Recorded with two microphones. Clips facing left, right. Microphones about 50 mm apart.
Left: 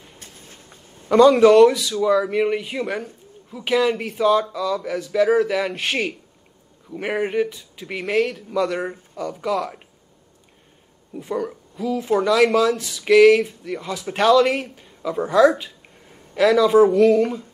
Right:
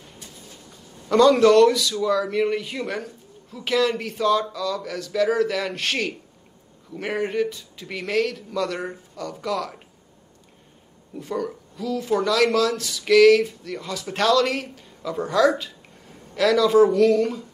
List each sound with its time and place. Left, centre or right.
0.2 s train: left
1.0 s a sound: centre
1.4 s speech: centre
11.1 s speech: centre